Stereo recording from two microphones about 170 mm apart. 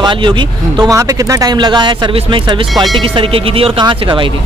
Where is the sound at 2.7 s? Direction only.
Centre (ahead or behind).